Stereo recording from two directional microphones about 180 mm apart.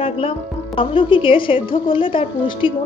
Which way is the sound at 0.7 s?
30° left (ahead or behind).